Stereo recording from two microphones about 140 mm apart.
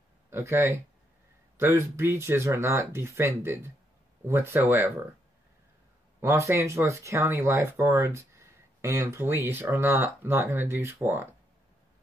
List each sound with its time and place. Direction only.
0.3 s speech: 20° right (ahead or behind)
6.2 s speech: 20° right (ahead or behind)